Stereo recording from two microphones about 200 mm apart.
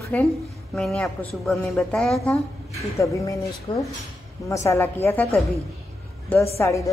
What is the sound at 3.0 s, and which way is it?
Speech, 15° left (ahead or behind).